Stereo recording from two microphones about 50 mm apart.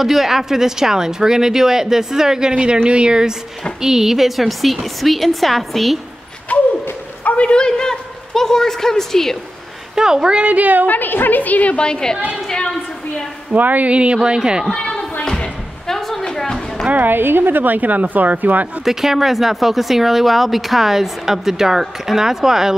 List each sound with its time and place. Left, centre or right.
0.0 s speech: centre
6.5 s a sound: left
7.2 s a woman's voice: left
9.9 s speech: centre; by 10.9 s right
10.9 s a woman's voice: left; by 12.2 s centre
12.4 s a sound: centre
13.5 s speech: right; by 14.7 s centre
14.8 s a sound: left
15.2 s slam: centre
16.3 s a sound: centre
16.9 s speech: right
18.9 s speech: centre